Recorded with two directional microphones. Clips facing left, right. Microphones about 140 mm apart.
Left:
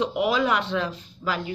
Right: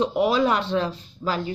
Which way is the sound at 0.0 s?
35° right (ahead or behind).